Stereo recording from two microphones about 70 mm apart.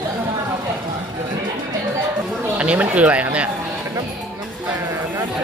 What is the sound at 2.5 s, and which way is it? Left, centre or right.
Speech, centre.